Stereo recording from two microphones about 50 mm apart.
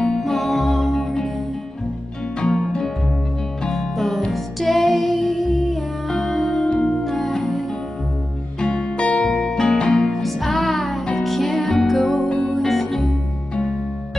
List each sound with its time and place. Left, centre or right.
0.2 s music: centre
2.5 s music: centre
6.7 s music: left
7.1 s music: centre
8.5 s music: centre
12.3 s music: centre
12.5 s music: centre